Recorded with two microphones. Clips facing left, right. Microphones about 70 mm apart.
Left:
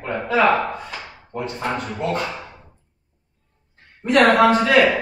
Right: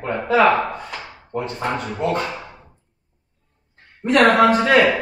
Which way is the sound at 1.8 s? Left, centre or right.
Centre.